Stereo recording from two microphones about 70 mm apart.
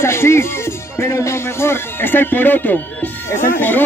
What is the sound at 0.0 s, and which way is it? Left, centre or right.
Speech, left.